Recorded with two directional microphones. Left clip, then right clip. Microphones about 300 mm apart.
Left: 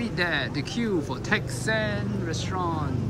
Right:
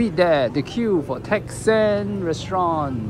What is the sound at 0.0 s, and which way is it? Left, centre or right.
Speech, centre.